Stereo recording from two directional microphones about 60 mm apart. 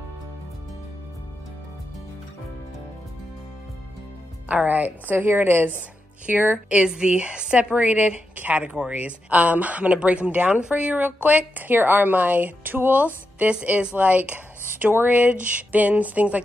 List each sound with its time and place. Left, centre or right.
4.5 s a woman's voice: right